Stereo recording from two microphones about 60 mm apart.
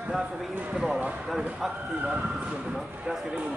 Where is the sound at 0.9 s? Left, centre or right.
Right.